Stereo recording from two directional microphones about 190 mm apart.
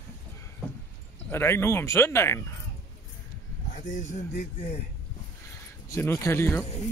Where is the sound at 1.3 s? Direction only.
15° left (ahead or behind).